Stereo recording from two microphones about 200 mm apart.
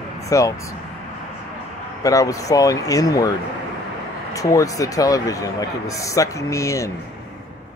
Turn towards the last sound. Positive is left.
turn(degrees=15)  # may be behind; listen again after turning